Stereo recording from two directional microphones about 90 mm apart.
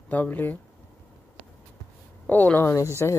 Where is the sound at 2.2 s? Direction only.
15° left (ahead or behind).